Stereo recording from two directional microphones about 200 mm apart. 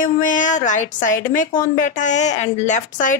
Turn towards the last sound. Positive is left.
turn(degrees=40)  # may be behind; listen again after turning